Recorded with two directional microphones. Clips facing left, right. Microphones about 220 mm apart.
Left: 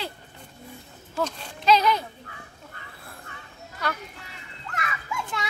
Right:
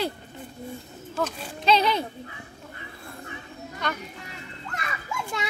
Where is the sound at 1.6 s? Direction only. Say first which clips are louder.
Left 1 dB; 30° right (ahead or behind).